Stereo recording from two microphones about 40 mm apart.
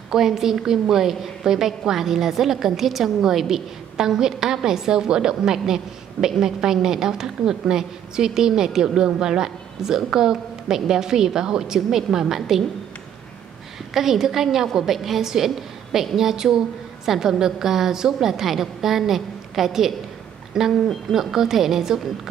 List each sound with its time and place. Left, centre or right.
0.1 s a woman's voice: centre
13.9 s a woman's voice: centre